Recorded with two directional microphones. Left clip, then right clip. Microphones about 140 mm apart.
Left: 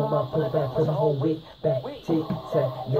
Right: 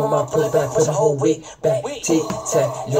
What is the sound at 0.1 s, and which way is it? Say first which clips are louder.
Speech: right 7 dB; 20° right (ahead or behind).